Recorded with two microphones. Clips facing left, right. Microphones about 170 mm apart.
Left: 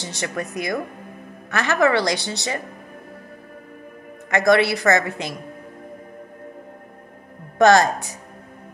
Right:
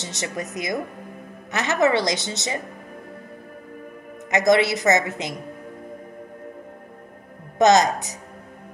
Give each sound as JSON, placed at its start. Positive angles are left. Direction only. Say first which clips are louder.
{"t": 0.0, "sound": "a woman's voice", "louder": "left 2 dB", "side_deg": -20}
{"t": 4.3, "sound": "a woman's voice", "louder": "left 1 dB", "side_deg": -20}
{"t": 7.5, "sound": "a woman's voice", "louder": "left 1 dB", "side_deg": -20}